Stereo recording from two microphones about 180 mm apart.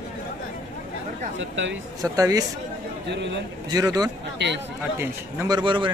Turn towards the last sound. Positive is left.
turn(degrees=-25)  # may be behind; listen again after turning